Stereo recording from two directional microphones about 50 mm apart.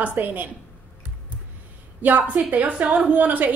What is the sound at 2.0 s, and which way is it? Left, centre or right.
A woman's voice, right.